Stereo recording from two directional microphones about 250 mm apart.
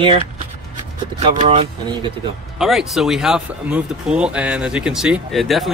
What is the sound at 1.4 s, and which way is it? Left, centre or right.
Speech, right.